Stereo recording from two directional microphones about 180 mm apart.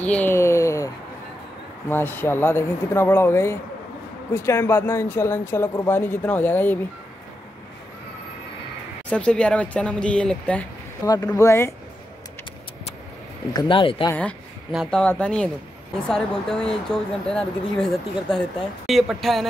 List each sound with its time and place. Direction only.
0.0 s a sound: 10° left (ahead or behind)
1.9 s speech: 10° left (ahead or behind)
9.1 s speech: 5° left (ahead or behind)
13.5 s speech: 25° left (ahead or behind)
14.1 s a sound: 5° left (ahead or behind)
14.8 s speech: 5° left (ahead or behind)